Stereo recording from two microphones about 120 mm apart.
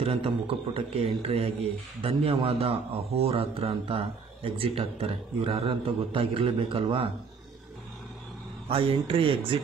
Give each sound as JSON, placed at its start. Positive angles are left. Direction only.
{"t": 0.0, "sound": "a man's voice", "side_deg": -50}
{"t": 8.6, "sound": "a man's voice", "side_deg": -50}